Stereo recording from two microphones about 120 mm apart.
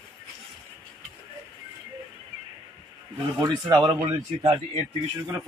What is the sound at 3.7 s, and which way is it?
Speech, 35° right (ahead or behind).